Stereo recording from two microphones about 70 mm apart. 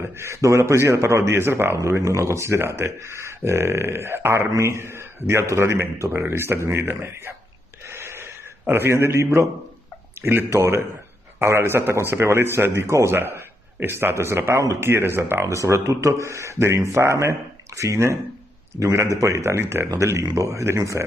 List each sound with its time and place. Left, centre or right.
0.0 s speech: right
1.9 s speech: right
7.9 s a sound: right
10.2 s a man's voice: right